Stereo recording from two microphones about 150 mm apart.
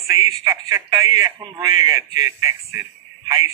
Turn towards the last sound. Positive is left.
turn(degrees=-20)  # may be behind; listen again after turning